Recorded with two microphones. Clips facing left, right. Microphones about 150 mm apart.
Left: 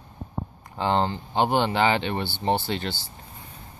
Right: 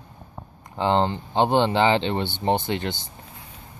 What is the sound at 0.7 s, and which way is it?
Speech, 20° right (ahead or behind).